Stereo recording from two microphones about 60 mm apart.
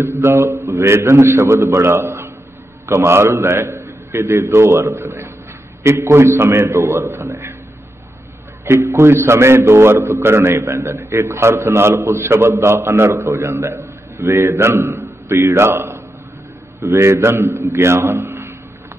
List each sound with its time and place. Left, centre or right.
0.0 s a man's voice: right
8.6 s a man's voice: right